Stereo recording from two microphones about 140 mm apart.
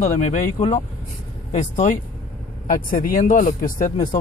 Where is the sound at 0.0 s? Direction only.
60° left (ahead or behind).